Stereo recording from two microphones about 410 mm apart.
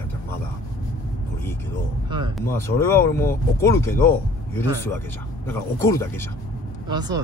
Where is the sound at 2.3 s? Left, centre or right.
Centre.